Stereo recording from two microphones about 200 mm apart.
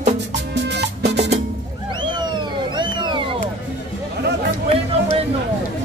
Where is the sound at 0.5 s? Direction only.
60° right (ahead or behind).